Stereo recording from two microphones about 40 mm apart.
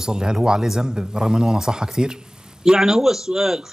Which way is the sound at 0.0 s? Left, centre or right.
Centre.